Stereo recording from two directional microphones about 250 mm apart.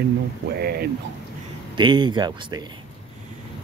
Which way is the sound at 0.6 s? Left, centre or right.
Right.